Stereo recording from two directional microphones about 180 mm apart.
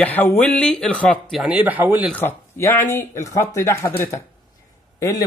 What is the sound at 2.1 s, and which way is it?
Speech, 10° left (ahead or behind).